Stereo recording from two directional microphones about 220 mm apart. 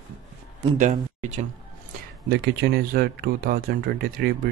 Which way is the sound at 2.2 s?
45° right (ahead or behind).